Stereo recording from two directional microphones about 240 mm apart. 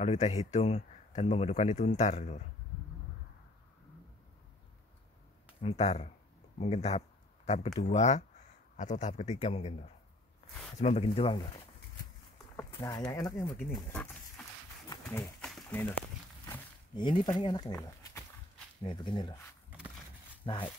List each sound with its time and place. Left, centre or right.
0.0 s speech: left
5.6 s speech: left
12.7 s speech: centre
15.0 s a sound: centre
16.4 s a sound: centre
18.9 s speech: centre
20.4 s speech: left